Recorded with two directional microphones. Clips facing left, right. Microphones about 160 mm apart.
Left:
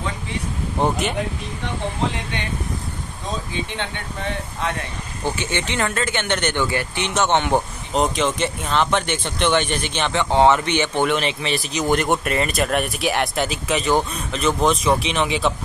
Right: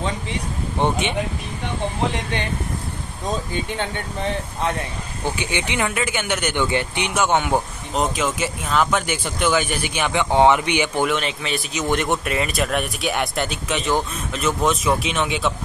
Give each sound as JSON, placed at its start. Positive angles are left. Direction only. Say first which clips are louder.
{"t": 0.7, "sound": "speech", "louder": "even", "side_deg": 0}
{"t": 3.5, "sound": "speech", "louder": "right 2 dB", "side_deg": -45}
{"t": 5.2, "sound": "speech", "louder": "left 1 dB", "side_deg": -15}
{"t": 7.1, "sound": "speech", "louder": "left 1 dB", "side_deg": -10}